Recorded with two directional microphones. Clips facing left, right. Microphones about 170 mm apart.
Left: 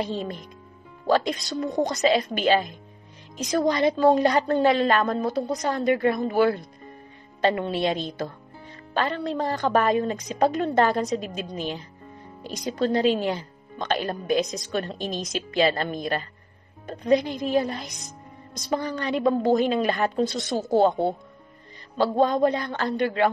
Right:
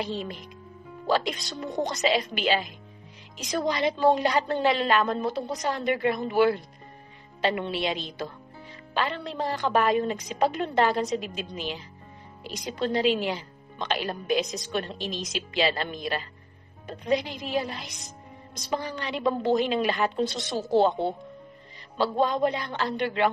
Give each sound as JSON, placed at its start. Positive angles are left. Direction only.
{"t": 0.0, "sound": "a woman's voice", "side_deg": 50}
{"t": 21.9, "sound": "a woman's voice", "side_deg": 45}